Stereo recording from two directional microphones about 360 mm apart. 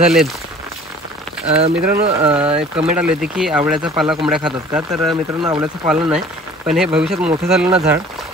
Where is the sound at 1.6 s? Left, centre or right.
Right.